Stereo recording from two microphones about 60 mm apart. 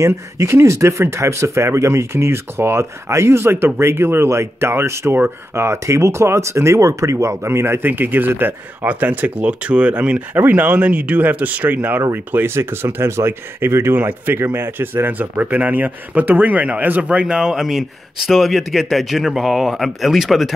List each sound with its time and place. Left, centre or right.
0.0 s speech: right
10.3 s speech: right
17.4 s speech: centre